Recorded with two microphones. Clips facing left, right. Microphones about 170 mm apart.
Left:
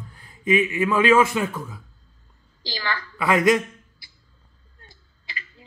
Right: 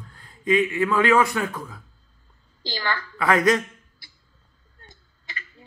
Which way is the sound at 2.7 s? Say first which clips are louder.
Right 1 dB; 20° left (ahead or behind).